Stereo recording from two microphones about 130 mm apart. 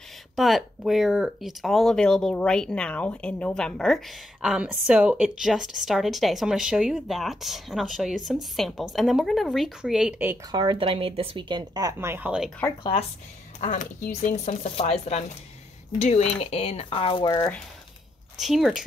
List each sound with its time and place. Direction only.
0.4 s speech: centre (ahead or behind)
10.5 s speech: 35° right (ahead or behind); by 12.3 s 20° right (ahead or behind)
13.6 s speech: 75° left (ahead or behind); by 17.3 s 40° left (ahead or behind)
18.4 s speech: centre (ahead or behind)